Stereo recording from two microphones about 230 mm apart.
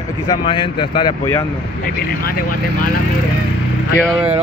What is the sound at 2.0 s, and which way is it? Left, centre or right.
Speech, left.